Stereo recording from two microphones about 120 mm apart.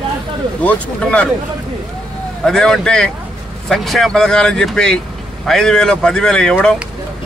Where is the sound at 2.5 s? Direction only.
5° left (ahead or behind).